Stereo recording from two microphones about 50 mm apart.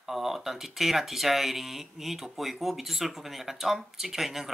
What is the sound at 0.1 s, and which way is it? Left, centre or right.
Speech, centre.